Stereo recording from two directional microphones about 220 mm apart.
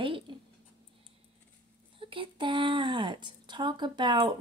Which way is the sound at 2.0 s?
25° right (ahead or behind).